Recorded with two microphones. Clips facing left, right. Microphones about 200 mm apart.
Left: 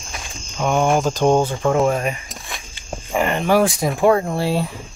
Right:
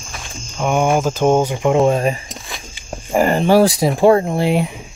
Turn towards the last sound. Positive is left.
turn(degrees=-20)  # may be behind; listen again after turning